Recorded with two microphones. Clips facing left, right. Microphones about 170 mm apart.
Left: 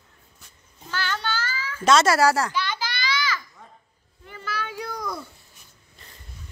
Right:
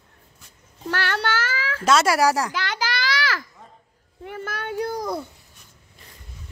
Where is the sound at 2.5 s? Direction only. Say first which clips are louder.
Right 2 dB; 90° right.